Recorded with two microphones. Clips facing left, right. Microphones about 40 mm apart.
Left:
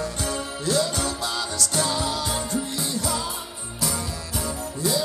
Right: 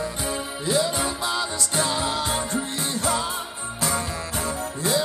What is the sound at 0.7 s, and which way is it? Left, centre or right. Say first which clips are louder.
Music: right 1 dB; right.